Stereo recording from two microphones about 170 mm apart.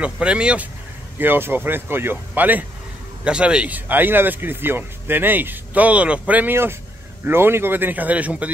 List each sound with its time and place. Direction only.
0.0 s speech: 5° right (ahead or behind)